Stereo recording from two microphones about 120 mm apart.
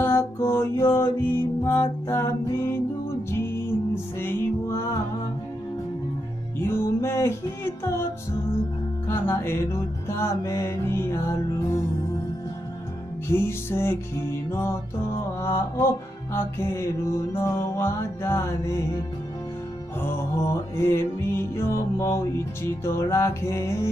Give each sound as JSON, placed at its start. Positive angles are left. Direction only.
{"t": 0.0, "sound": "music", "side_deg": 20}
{"t": 6.6, "sound": "music", "side_deg": 20}
{"t": 13.3, "sound": "music", "side_deg": 20}
{"t": 20.0, "sound": "music", "side_deg": 20}